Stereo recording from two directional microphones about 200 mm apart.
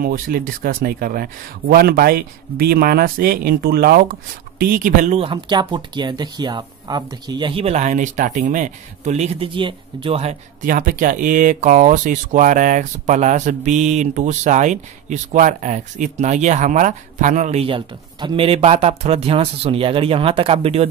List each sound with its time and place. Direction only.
0.0 s speech: 45° right (ahead or behind); by 20.9 s 30° right (ahead or behind)